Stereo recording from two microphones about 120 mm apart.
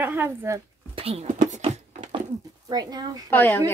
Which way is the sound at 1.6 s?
70° right (ahead or behind).